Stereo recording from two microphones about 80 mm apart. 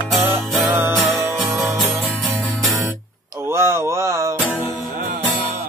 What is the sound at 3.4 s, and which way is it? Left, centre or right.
Mantra, right.